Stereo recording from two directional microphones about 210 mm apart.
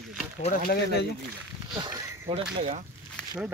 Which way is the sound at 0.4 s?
40° left (ahead or behind).